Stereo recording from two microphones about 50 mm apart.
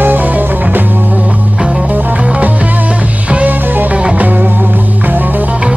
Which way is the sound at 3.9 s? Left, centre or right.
Right.